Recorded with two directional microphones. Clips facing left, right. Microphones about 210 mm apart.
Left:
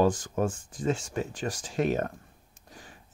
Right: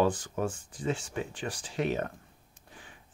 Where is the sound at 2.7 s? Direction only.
40° left (ahead or behind).